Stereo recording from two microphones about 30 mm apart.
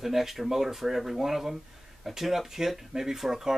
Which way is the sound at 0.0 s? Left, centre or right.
Centre.